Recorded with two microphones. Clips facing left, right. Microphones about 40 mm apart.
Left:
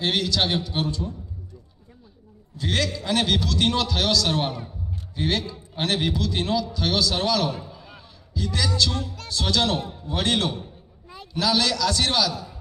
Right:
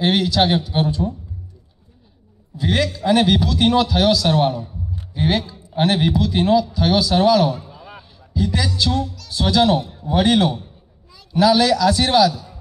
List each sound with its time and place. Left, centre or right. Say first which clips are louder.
0.0 s a man's voice: right 6 dB; centre
2.5 s a man's voice: right 5 dB; centre
7.7 s a sound: right 5 dB; centre
9.3 s a man's voice: right 7 dB; centre